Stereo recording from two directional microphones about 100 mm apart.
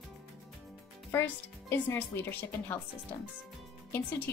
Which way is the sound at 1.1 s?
25° left (ahead or behind).